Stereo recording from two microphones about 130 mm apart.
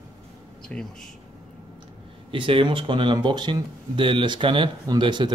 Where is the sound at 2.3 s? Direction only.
45° right (ahead or behind).